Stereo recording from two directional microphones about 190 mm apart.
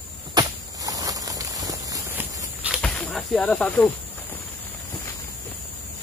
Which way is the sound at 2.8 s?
5° left (ahead or behind).